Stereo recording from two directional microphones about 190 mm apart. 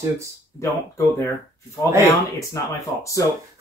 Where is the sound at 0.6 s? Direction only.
15° left (ahead or behind).